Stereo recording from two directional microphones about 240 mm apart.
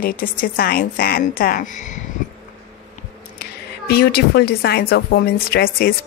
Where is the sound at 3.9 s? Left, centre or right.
Left.